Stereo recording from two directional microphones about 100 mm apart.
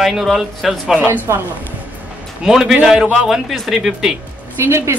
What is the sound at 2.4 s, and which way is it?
A man's voice, 5° right (ahead or behind).